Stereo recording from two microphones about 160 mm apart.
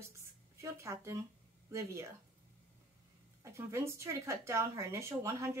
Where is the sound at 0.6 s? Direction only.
20° right (ahead or behind).